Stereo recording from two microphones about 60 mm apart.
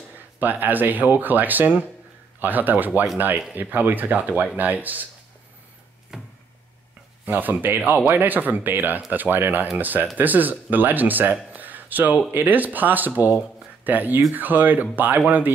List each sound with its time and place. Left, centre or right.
0.4 s speech: right
6.1 s a sound: centre
7.2 s speech: right